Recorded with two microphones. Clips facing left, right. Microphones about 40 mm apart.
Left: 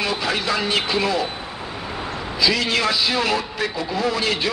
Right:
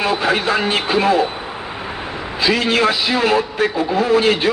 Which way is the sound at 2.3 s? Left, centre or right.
Right.